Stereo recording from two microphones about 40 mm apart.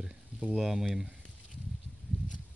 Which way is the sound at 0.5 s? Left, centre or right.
Centre.